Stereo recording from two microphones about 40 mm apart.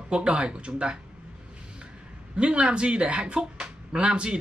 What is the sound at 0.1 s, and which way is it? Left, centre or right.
Speech, right.